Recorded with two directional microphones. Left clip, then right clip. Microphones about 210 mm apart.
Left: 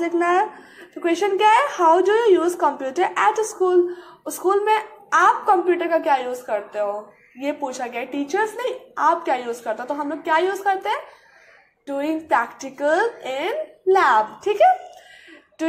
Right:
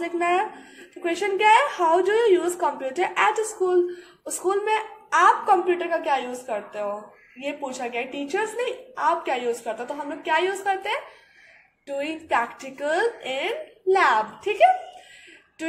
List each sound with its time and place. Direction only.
0.0 s a woman's voice: 15° left (ahead or behind)